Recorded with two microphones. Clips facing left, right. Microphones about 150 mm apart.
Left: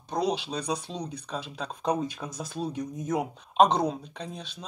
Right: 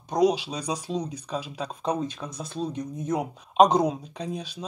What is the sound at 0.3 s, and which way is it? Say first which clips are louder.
Speech: right 1 dB; 5° right (ahead or behind).